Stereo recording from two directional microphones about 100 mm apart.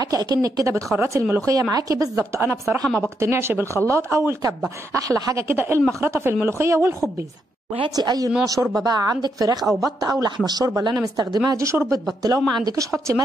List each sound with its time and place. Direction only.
0.0 s a woman's voice: 40° right (ahead or behind)
5.5 s a woman's voice: 25° right (ahead or behind)
7.9 s speech: 40° right (ahead or behind)